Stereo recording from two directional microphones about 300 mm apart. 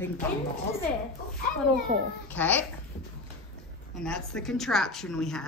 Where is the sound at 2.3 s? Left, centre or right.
Centre.